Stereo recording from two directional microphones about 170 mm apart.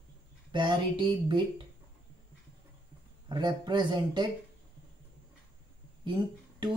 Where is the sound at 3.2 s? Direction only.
25° right (ahead or behind).